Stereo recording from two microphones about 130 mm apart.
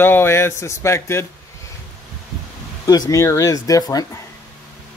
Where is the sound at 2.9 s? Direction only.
25° left (ahead or behind).